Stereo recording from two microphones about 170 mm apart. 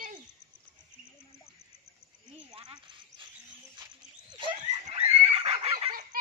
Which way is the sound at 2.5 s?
25° right (ahead or behind).